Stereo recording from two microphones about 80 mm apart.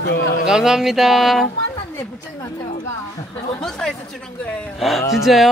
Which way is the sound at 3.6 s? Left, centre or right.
Centre.